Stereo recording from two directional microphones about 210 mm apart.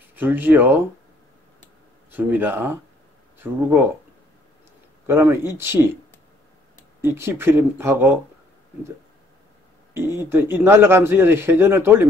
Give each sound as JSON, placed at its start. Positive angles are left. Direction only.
{"t": 0.1, "sound": "a man's voice", "side_deg": -10}
{"t": 2.0, "sound": "a man's voice", "side_deg": -10}
{"t": 5.0, "sound": "a man's voice", "side_deg": -10}
{"t": 7.0, "sound": "a man's voice", "side_deg": -10}
{"t": 9.9, "sound": "a man's voice", "side_deg": -10}